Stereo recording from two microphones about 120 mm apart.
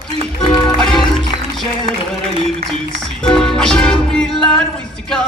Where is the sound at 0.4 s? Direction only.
50° left (ahead or behind).